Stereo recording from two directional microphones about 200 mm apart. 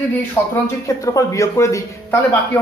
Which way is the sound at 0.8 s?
15° left (ahead or behind).